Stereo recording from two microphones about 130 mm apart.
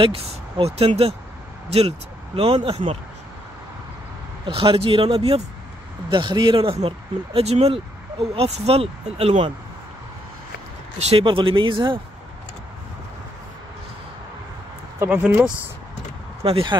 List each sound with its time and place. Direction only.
0.0 s speech: 45° right (ahead or behind)
4.5 s speech: 45° right (ahead or behind)
11.0 s speech: 50° right (ahead or behind)
15.0 s speech: 10° right (ahead or behind)
16.4 s speech: 45° right (ahead or behind)